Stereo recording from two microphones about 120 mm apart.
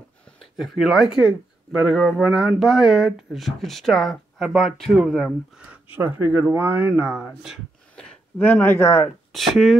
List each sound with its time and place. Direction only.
0.4 s speech: centre (ahead or behind)
5.9 s speech: 15° right (ahead or behind)
7.9 s a sound: 10° left (ahead or behind)
9.3 s speech: centre (ahead or behind)